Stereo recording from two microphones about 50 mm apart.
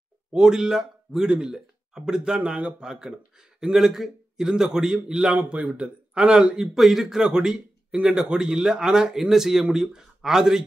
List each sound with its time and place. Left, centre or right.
0.3 s speech: centre
5.4 s speech: right
6.7 s speech: centre